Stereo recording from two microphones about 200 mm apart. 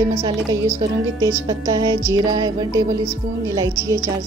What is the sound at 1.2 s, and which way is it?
Speech, 20° right (ahead or behind).